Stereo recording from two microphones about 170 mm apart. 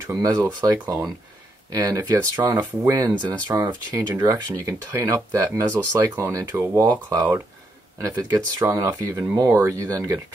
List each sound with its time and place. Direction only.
0.0 s speech: 20° right (ahead or behind)